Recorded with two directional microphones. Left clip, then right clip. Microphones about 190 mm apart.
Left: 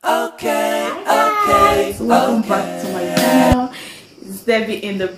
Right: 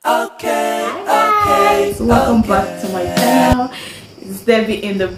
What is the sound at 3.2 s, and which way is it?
Speech, centre (ahead or behind).